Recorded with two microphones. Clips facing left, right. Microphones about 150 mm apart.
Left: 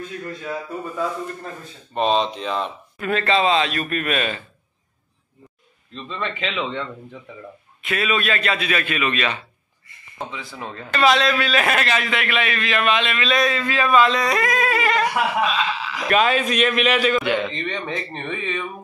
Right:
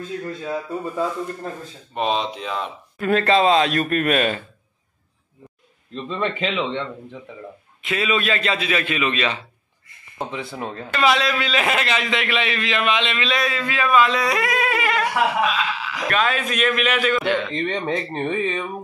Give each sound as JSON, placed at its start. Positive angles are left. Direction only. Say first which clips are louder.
{"t": 0.4, "sound": "a man's voice", "louder": "right 1 dB", "side_deg": -25}
{"t": 2.0, "sound": "a man's voice", "louder": "left 3 dB", "side_deg": -5}
{"t": 3.0, "sound": "speech", "louder": "right 3 dB", "side_deg": -45}
{"t": 6.0, "sound": "a man's voice", "louder": "right 4 dB", "side_deg": -15}
{"t": 10.6, "sound": "speech", "louder": "right 3 dB", "side_deg": -30}
{"t": 10.9, "sound": "a man's voice", "louder": "left 2 dB", "side_deg": -10}
{"t": 13.3, "sound": "speech", "louder": "left 3 dB", "side_deg": -5}
{"t": 16.1, "sound": "a man's voice", "louder": "left 4 dB", "side_deg": 5}
{"t": 17.2, "sound": "a man's voice", "louder": "even", "side_deg": 15}
{"t": 17.6, "sound": "speech", "louder": "right 4 dB", "side_deg": -40}